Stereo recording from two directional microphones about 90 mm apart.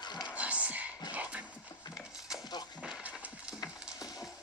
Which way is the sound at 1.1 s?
15° right (ahead or behind).